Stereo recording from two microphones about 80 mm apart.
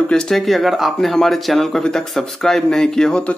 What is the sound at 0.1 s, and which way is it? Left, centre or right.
A man's voice, centre.